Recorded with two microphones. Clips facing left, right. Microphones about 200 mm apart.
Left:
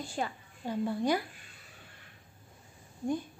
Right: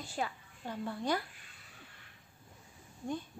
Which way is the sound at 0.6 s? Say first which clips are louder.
Left 6 dB; 15° left (ahead or behind).